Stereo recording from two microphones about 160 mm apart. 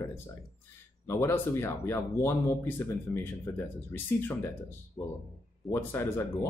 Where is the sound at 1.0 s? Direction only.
15° left (ahead or behind).